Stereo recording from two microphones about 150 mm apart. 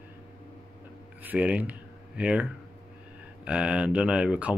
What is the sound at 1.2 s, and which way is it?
Speech, 10° right (ahead or behind).